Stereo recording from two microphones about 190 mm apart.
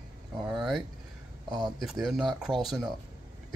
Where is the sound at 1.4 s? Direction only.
20° right (ahead or behind).